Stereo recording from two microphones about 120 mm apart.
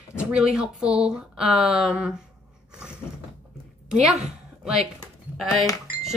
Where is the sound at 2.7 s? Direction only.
10° right (ahead or behind).